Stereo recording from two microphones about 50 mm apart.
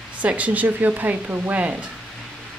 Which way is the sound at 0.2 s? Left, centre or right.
Right.